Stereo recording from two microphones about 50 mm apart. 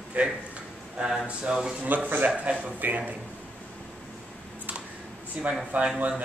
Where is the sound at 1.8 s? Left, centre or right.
Right.